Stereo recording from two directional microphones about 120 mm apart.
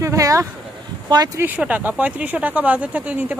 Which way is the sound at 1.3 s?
15° right (ahead or behind).